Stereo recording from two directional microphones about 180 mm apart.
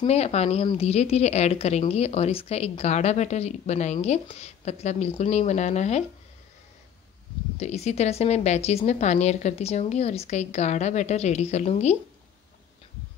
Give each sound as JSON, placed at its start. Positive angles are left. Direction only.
{"t": 0.0, "sound": "a woman's voice", "side_deg": 35}
{"t": 7.5, "sound": "a woman's voice", "side_deg": 35}